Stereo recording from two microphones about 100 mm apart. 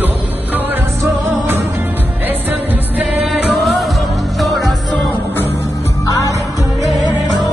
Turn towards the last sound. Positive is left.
turn(degrees=35)  # may be behind; listen again after turning